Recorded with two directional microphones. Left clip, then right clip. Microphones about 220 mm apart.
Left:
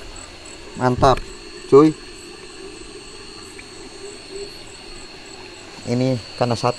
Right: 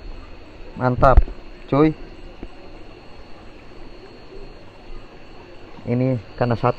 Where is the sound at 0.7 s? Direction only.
25° left (ahead or behind).